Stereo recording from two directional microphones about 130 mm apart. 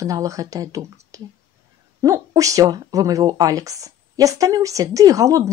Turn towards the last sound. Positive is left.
turn(degrees=-25)  # may be behind; listen again after turning